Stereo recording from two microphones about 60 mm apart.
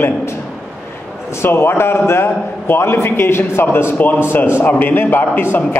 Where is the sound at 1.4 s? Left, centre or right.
Left.